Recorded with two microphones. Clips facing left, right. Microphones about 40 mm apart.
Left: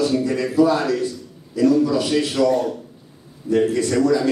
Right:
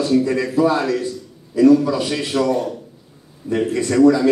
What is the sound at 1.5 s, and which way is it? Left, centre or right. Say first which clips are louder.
A man's voice: right 3 dB; right.